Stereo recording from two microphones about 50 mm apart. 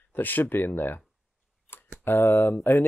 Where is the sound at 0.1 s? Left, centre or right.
Left.